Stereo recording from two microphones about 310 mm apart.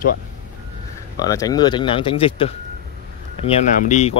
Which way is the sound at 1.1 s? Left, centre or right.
Centre.